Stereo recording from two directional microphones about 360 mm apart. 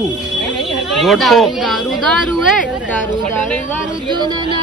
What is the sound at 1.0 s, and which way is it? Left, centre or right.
Speech, centre.